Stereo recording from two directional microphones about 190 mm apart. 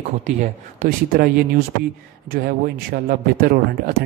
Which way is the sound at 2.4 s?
50° right (ahead or behind).